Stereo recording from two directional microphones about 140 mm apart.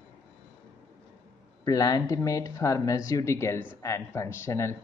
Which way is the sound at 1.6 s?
25° left (ahead or behind).